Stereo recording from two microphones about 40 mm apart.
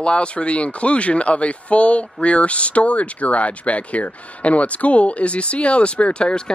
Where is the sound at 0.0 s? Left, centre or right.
Left.